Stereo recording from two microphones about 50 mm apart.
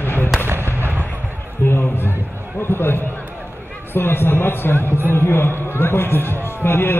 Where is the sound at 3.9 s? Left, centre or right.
Left.